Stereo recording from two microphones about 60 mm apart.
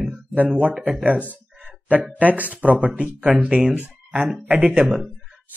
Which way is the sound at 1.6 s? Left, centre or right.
Right.